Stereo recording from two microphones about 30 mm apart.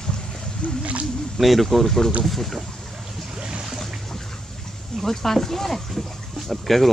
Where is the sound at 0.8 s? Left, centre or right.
Right.